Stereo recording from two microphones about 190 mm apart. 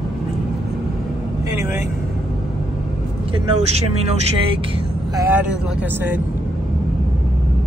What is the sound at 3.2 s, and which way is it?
Speech, 35° right (ahead or behind).